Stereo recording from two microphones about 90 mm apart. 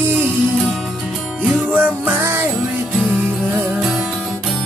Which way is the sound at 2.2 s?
25° right (ahead or behind).